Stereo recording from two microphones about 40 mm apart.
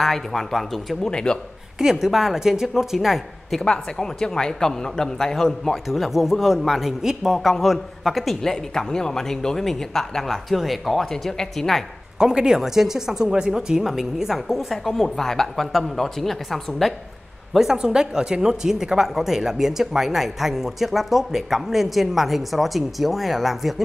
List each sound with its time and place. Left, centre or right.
0.0 s speech: centre
1.0 s speech: centre
1.8 s speech: centre
3.5 s speech: centre
5.9 s speech: centre
7.3 s speech: centre
8.4 s speech: centre
11.1 s speech: centre
12.2 s speech: centre
17.6 s speech: centre